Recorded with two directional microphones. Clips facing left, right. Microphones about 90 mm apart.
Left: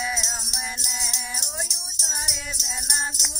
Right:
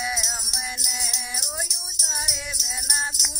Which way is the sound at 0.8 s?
35° left (ahead or behind).